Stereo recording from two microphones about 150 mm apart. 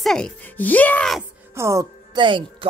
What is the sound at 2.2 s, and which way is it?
Speech, 35° right (ahead or behind).